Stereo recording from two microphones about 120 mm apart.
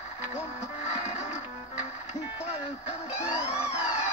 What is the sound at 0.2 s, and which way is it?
Music, 60° left (ahead or behind).